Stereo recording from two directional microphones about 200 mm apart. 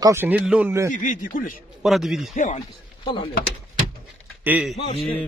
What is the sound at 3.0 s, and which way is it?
Speech, 25° left (ahead or behind).